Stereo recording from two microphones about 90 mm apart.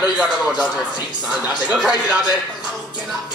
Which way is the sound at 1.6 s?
10° right (ahead or behind).